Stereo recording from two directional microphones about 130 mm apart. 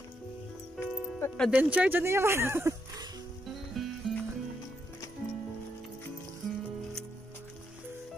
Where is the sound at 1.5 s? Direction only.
10° right (ahead or behind).